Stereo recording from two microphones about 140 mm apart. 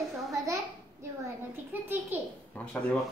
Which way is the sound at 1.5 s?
15° right (ahead or behind).